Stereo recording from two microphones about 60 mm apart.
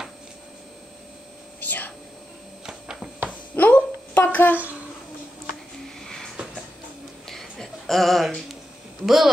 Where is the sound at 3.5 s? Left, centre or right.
Left.